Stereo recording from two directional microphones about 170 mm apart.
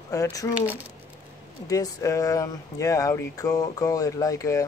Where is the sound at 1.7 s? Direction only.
20° left (ahead or behind).